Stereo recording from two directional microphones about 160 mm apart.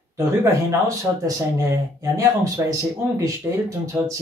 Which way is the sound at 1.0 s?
20° right (ahead or behind).